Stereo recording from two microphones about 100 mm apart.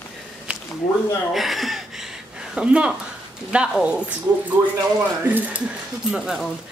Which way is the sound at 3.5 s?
10° right (ahead or behind).